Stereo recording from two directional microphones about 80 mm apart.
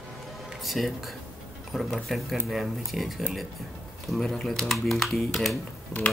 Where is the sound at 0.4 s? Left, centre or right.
Centre.